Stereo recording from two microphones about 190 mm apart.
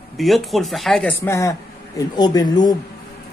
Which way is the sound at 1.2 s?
15° left (ahead or behind).